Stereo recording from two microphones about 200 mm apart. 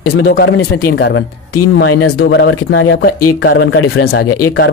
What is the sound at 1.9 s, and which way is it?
Speech, 90° left.